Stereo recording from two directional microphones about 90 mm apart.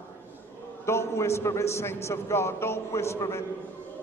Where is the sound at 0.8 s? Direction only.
30° left (ahead or behind).